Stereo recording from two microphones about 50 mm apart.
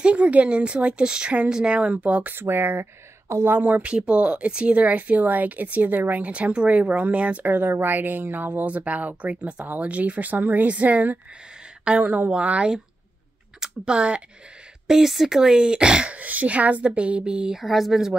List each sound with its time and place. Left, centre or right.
0.0 s speech: right
2.3 s speech: right
3.4 s speech: right
3.8 s speech: right
7.4 s speech: right
14.9 s a woman's voice: centre
16.2 s speech: right
17.6 s speech: centre